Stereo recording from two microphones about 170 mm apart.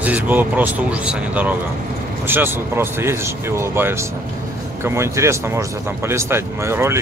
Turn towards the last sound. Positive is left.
turn(degrees=-15)  # may be behind; listen again after turning